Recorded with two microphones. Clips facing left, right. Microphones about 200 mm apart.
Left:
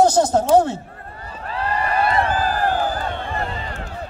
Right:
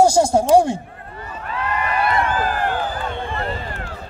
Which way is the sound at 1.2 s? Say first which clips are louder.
Even; 35° left (ahead or behind).